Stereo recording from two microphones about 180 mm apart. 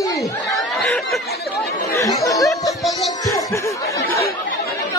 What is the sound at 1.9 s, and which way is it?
Chatter, 15° left (ahead or behind).